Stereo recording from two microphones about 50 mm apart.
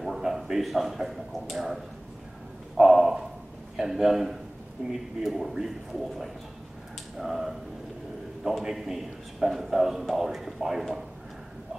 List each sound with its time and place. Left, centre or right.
0.0 s speech: centre
2.8 s a sound: centre
3.7 s a man's voice: centre
4.8 s speech: right
5.2 s a man's voice: centre
7.2 s a man's voice: centre